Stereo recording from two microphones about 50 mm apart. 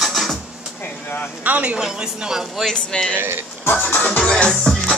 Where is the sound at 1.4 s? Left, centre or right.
Right.